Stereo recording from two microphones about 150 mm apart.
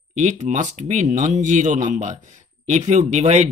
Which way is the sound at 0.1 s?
50° right (ahead or behind).